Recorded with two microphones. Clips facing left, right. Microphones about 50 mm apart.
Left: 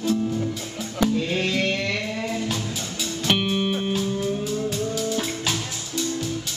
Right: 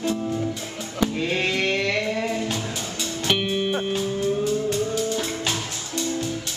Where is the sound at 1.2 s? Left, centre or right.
Right.